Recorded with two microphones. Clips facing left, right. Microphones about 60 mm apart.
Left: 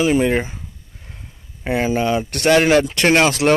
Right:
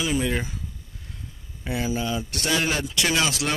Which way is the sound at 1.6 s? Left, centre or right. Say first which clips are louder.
Left 8 dB; left.